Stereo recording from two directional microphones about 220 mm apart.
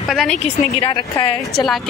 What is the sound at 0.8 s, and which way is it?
Speech, 25° left (ahead or behind).